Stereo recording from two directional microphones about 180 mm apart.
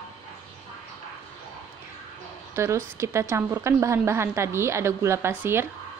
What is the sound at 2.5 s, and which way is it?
A woman's voice, 15° right (ahead or behind).